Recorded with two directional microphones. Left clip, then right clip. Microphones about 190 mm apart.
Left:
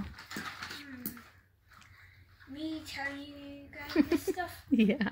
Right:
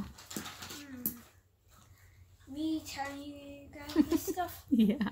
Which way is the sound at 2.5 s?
Centre (ahead or behind).